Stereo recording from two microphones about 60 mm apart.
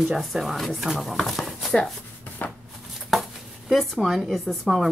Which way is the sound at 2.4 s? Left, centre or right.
Left.